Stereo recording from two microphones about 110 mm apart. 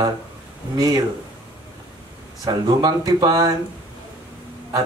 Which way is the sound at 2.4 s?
40° right (ahead or behind).